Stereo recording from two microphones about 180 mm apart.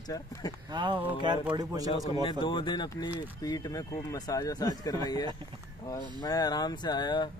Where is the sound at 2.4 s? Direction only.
25° left (ahead or behind).